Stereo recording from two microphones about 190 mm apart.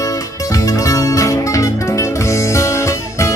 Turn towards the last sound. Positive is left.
turn(degrees=15)  # may be behind; listen again after turning